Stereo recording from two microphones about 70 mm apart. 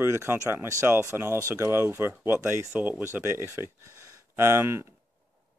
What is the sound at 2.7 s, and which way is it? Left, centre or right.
Speech, right.